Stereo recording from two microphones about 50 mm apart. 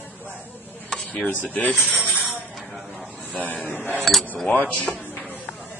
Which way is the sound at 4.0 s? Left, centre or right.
Centre.